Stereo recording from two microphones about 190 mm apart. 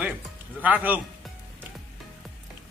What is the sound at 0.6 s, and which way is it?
Speech, 10° right (ahead or behind).